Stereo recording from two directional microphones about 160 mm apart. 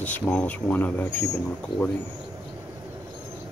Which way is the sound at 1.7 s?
90° left.